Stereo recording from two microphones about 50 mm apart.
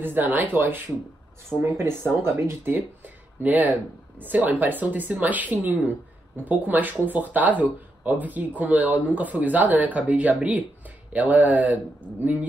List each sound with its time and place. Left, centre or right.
0.0 s speech: right
1.6 s speech: right
3.4 s speech: right